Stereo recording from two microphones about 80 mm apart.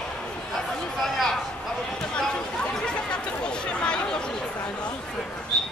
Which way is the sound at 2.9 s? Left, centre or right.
Centre.